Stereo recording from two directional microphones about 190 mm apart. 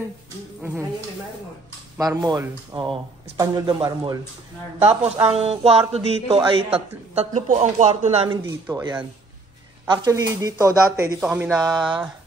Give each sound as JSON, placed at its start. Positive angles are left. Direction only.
{"t": 0.6, "sound": "speech", "side_deg": -15}
{"t": 2.0, "sound": "speech", "side_deg": -20}
{"t": 4.8, "sound": "a man's voice", "side_deg": -30}
{"t": 9.8, "sound": "speech", "side_deg": -20}
{"t": 11.1, "sound": "speech", "side_deg": -5}